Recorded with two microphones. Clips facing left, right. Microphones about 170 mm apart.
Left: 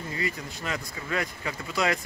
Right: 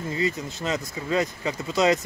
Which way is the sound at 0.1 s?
25° right (ahead or behind).